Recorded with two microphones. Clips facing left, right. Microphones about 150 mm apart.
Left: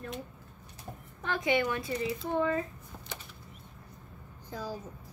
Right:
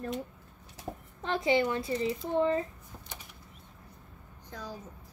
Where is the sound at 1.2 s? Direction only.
25° right (ahead or behind).